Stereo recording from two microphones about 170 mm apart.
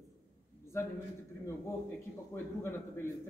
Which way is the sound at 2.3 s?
20° left (ahead or behind).